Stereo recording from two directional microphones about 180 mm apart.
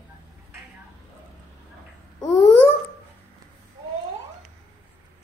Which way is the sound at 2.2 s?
25° left (ahead or behind).